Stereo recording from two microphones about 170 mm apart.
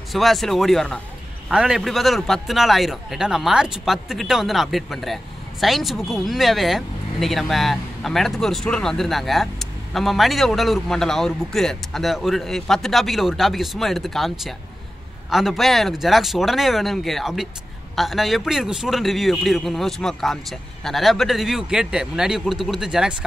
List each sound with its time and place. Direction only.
0.1 s a man's voice: centre (ahead or behind)